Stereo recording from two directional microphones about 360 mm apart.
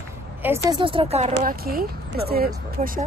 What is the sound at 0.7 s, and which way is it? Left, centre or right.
Speech, centre.